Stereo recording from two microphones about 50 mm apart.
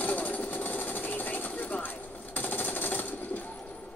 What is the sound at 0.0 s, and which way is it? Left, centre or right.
Sewing machine, left.